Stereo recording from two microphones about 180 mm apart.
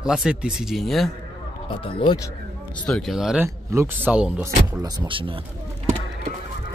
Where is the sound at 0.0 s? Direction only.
5° right (ahead or behind).